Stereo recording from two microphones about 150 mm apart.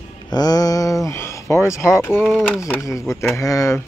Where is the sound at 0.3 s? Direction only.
25° left (ahead or behind).